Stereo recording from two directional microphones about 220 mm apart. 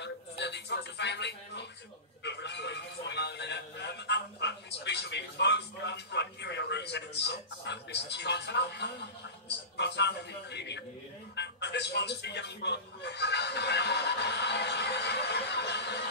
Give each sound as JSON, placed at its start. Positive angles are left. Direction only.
{"t": 0.0, "sound": "a man's voice", "side_deg": 50}